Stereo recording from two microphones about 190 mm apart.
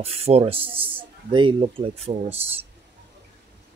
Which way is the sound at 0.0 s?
35° right (ahead or behind).